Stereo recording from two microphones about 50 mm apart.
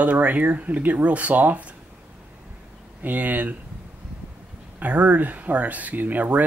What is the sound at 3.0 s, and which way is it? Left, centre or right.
Speech, right.